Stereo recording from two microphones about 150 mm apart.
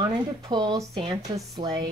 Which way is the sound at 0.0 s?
30° right (ahead or behind).